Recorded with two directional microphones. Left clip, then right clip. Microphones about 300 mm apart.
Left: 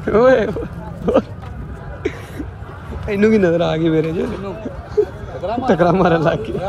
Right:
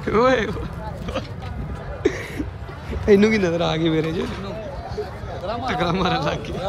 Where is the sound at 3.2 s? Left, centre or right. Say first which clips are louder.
Left 5 dB; centre.